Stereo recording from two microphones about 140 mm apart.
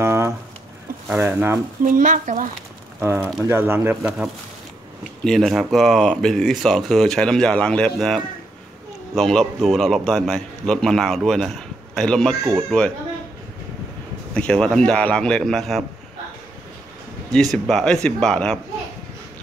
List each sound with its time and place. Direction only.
0.0 s a sound: 20° right (ahead or behind)
1.1 s speech: 15° right (ahead or behind)
1.9 s speech: 70° right (ahead or behind)
3.0 s speech: 20° right (ahead or behind)
5.2 s a man's voice: centre (ahead or behind)
14.3 s a man's voice: 5° left (ahead or behind)
17.3 s a man's voice: centre (ahead or behind)